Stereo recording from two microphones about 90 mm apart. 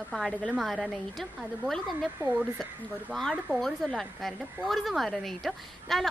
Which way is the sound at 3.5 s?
5° left (ahead or behind).